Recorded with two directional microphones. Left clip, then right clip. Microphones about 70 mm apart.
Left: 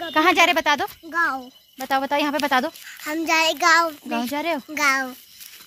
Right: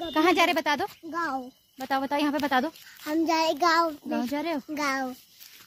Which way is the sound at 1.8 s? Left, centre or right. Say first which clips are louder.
Left 5 dB; left.